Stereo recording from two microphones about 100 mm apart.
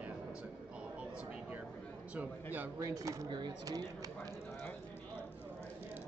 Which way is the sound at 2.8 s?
35° right (ahead or behind).